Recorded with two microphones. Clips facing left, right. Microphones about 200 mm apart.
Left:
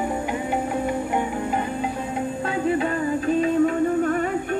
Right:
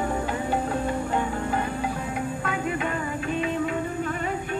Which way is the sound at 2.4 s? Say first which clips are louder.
Left 8 dB; 30° left (ahead or behind).